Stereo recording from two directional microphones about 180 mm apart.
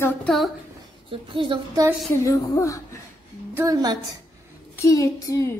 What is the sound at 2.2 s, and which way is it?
Speech, 20° left (ahead or behind).